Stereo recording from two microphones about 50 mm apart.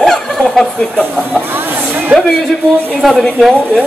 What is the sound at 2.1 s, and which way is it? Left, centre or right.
Speech, right.